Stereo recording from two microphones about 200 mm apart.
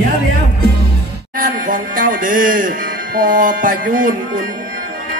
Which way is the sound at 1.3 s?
45° right (ahead or behind).